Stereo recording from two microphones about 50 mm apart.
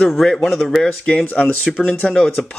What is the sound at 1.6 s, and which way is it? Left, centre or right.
Speech, centre.